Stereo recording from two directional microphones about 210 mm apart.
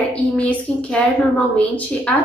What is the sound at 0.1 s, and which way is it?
A woman's voice, 5° left (ahead or behind).